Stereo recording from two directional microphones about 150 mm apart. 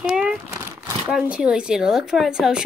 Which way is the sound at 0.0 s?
5° right (ahead or behind).